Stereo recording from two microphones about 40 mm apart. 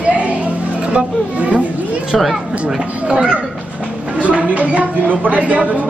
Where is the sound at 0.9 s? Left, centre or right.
Right.